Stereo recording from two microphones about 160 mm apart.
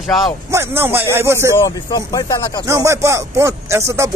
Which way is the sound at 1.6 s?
25° left (ahead or behind).